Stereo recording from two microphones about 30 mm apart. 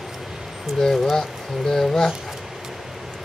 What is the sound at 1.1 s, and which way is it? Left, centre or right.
Speech, centre.